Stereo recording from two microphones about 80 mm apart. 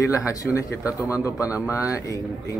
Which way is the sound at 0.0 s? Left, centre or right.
Left.